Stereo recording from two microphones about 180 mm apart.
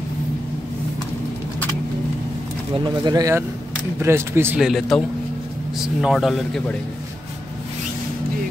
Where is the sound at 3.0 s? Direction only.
20° right (ahead or behind).